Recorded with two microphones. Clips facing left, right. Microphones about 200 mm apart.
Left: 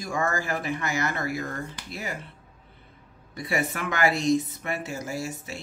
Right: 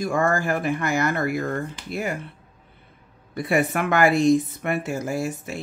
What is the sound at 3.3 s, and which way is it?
Speech, 55° right (ahead or behind).